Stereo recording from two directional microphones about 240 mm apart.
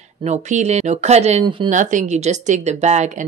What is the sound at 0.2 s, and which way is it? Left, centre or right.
Speech, right.